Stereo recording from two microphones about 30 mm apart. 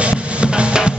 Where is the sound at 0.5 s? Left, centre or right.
Right.